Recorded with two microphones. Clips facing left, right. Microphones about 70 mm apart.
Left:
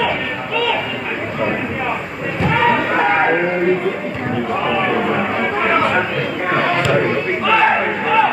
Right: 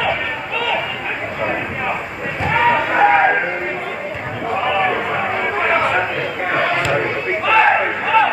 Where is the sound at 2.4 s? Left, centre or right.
Centre.